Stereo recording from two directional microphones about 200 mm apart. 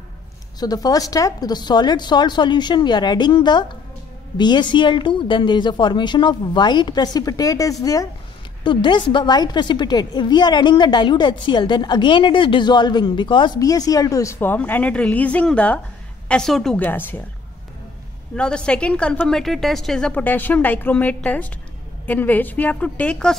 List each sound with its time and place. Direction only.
0.6 s a woman's voice: 20° left (ahead or behind)
18.3 s a woman's voice: 5° left (ahead or behind)